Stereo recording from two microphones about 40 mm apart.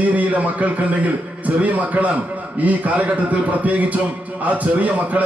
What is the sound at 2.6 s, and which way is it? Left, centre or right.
A man's voice, right.